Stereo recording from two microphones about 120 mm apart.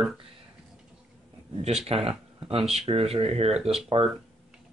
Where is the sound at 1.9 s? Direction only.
50° right (ahead or behind).